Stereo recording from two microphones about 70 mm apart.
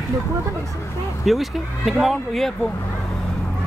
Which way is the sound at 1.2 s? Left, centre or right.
Centre.